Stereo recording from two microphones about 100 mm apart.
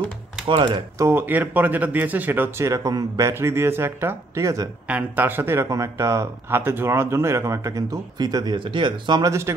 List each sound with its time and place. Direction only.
0.5 s speech: 55° right (ahead or behind)
0.9 s speech: 25° right (ahead or behind)
4.8 s speech: 15° right (ahead or behind); by 8.5 s 40° right (ahead or behind)
8.5 s speech: 55° right (ahead or behind)
9.2 s speech: 30° right (ahead or behind)